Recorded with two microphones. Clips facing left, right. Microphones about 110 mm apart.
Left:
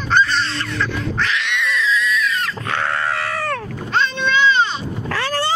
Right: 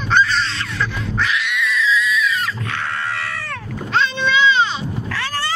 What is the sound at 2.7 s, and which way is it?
Sheep, 45° left (ahead or behind).